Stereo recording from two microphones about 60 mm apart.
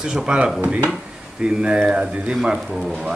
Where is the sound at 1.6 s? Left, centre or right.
Centre.